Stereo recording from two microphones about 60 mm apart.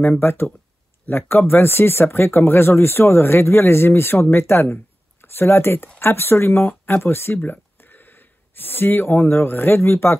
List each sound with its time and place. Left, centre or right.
0.2 s speech: left